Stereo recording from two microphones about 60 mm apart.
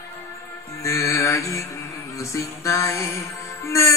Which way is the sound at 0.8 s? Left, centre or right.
Left.